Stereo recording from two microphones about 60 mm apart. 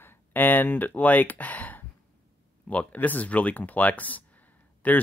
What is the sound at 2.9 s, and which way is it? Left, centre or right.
Speech, left.